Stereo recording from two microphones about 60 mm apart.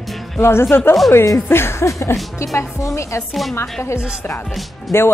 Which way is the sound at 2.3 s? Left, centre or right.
Left.